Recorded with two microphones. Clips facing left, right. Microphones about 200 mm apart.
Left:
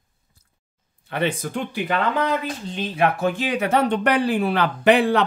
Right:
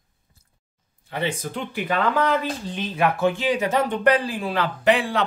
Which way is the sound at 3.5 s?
60° left (ahead or behind).